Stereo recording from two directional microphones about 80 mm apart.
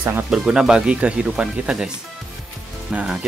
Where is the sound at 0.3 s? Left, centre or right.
Centre.